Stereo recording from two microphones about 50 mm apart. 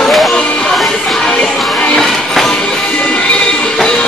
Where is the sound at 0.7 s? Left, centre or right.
Centre.